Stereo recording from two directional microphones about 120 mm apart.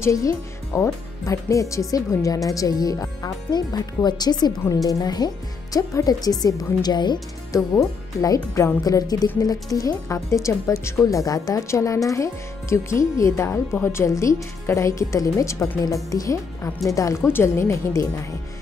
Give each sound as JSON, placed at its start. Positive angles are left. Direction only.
{"t": 0.0, "sound": "speech", "side_deg": 25}